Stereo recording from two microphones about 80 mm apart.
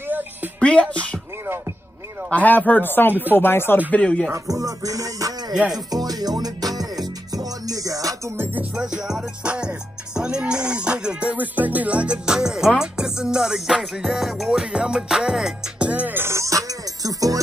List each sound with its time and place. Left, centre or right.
0.6 s music: centre
2.2 s speech: centre
3.9 s speech: centre
4.3 s music: right
8.7 s music: centre
15.9 s music: right